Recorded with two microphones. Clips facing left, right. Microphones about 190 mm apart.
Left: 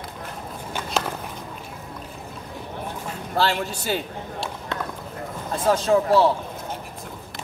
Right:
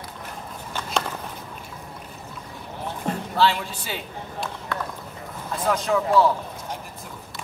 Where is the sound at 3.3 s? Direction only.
45° left (ahead or behind).